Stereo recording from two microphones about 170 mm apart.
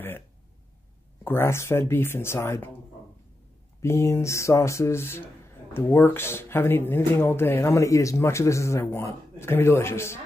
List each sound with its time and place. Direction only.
1.2 s speech: 15° left (ahead or behind)
3.8 s speech: 15° left (ahead or behind)